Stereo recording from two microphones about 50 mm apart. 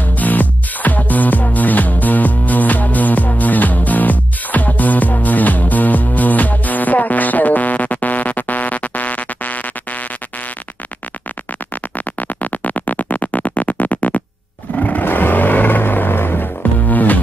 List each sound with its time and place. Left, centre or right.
0.0 s music: left
12.2 s music: left
14.8 s vehicle: left
16.9 s music: left